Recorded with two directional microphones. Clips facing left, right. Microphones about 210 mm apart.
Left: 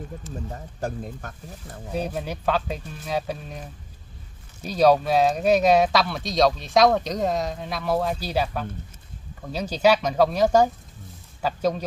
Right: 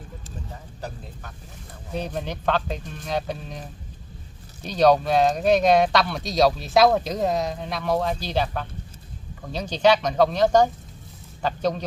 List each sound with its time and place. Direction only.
0.5 s speech: 50° left (ahead or behind)
2.0 s speech: 5° left (ahead or behind)
4.6 s speech: 5° left (ahead or behind)